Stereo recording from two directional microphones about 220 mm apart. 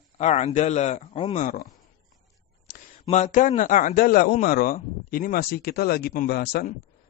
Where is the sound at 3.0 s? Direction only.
30° left (ahead or behind).